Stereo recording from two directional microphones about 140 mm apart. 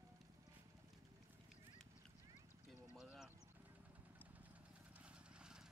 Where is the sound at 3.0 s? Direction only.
Centre (ahead or behind).